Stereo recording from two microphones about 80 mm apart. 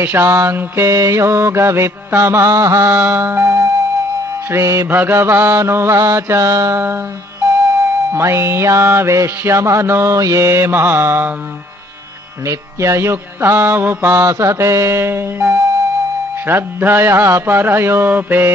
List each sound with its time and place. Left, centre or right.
0.0 s music: right
2.9 s music: right
4.8 s music: right
8.1 s music: right
12.4 s music: right